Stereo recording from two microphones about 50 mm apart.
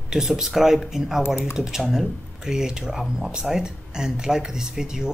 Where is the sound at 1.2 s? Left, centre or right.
Left.